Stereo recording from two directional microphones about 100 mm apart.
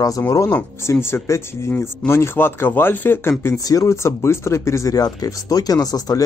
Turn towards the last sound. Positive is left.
turn(degrees=35)  # may be behind; listen again after turning